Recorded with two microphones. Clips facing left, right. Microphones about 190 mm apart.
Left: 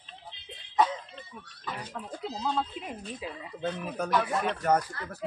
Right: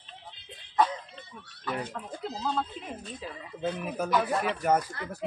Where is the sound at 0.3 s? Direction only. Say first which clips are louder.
Left 2 dB; 50° right (ahead or behind).